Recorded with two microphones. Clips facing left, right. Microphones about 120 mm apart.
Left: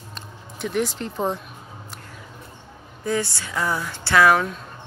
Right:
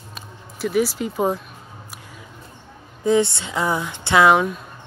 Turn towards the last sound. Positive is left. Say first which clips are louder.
# right 2 dB
turn(degrees=-15)  # may be behind; listen again after turning